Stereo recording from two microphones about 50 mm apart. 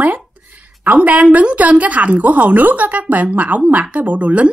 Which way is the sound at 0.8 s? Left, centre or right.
Right.